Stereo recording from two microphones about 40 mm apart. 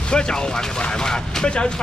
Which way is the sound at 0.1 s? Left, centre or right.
Centre.